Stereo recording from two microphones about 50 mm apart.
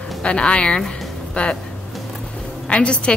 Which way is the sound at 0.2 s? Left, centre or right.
Left.